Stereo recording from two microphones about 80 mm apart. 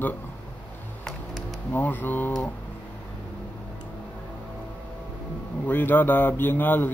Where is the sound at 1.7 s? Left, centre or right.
Left.